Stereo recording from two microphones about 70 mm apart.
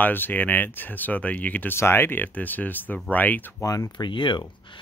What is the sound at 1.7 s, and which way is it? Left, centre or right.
Speech, left.